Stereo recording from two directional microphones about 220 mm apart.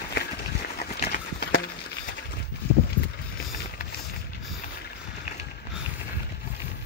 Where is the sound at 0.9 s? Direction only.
40° left (ahead or behind).